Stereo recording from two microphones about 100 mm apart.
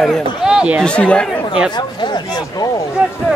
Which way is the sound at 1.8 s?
45° left (ahead or behind).